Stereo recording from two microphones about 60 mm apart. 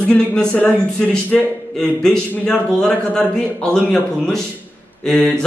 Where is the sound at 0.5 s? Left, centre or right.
Left.